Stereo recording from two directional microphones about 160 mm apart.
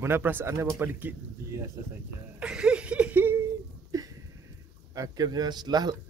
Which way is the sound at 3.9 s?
20° right (ahead or behind).